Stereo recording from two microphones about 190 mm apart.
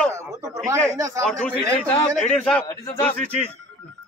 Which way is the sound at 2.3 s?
5° left (ahead or behind).